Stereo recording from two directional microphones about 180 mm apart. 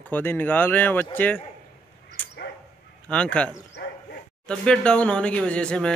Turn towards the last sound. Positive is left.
turn(degrees=5)  # may be behind; listen again after turning